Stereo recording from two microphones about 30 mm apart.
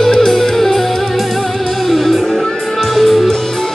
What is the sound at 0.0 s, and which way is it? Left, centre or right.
Music, left.